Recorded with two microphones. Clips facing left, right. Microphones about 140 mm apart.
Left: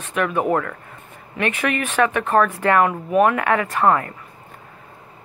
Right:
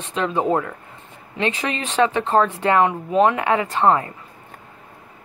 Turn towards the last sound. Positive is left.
turn(degrees=-20)  # may be behind; listen again after turning